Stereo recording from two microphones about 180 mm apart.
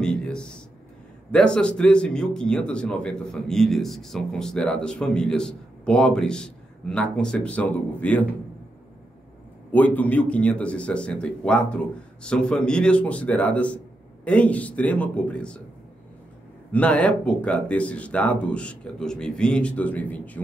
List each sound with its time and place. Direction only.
0.0 s a sound: 5° left (ahead or behind)
1.3 s a man's voice: 5° left (ahead or behind)
9.7 s a man's voice: 10° left (ahead or behind)
16.7 s a man's voice: 5° left (ahead or behind)